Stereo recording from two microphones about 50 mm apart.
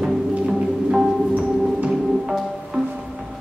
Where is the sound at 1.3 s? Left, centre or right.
Right.